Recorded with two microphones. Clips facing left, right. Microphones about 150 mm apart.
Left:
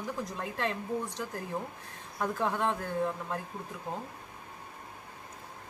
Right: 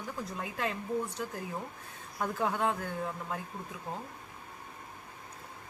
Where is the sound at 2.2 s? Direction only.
5° right (ahead or behind).